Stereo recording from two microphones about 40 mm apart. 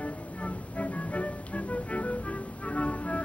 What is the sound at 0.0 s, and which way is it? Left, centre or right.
Music, left.